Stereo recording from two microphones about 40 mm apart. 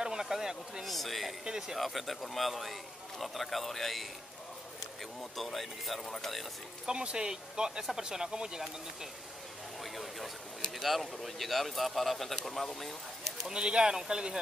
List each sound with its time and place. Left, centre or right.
0.0 s speech: centre
0.8 s speech: centre
1.4 s speech: centre
1.8 s speech: centre
5.3 s speech: centre
6.9 s speech: right
9.9 s speech: centre
13.5 s speech: centre